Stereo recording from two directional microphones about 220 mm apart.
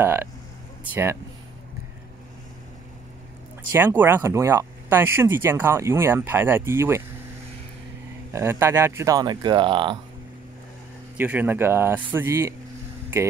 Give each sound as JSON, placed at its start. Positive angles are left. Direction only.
{"t": 0.0, "sound": "speech", "side_deg": -10}
{"t": 3.7, "sound": "speech", "side_deg": -10}
{"t": 8.3, "sound": "speech", "side_deg": -10}
{"t": 11.1, "sound": "speech", "side_deg": -10}